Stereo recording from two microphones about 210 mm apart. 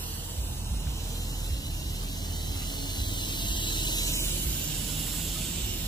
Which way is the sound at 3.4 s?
20° left (ahead or behind).